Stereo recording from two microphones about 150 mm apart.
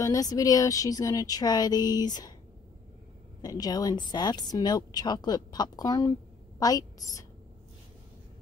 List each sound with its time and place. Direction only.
0.0 s a woman's voice: 25° left (ahead or behind)
3.4 s a woman's voice: 25° left (ahead or behind)